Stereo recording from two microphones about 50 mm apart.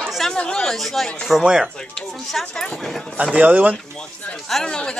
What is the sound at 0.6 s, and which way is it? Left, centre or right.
Speech, centre.